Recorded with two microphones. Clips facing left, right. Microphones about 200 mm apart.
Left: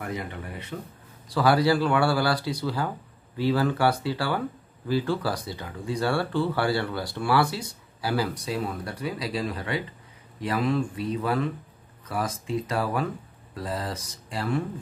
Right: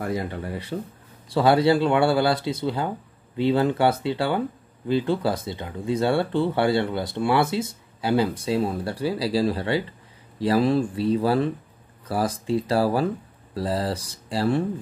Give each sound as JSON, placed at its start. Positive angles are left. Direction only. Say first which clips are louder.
{"t": 0.0, "sound": "speech", "louder": "right 6 dB", "side_deg": -35}